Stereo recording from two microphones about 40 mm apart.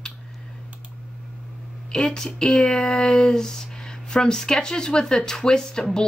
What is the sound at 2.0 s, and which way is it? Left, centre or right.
A woman's voice, centre.